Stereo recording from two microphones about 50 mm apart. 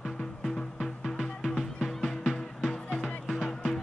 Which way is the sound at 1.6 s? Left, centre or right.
Centre.